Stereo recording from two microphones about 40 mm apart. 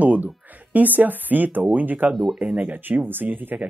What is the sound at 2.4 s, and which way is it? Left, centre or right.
Speech, right.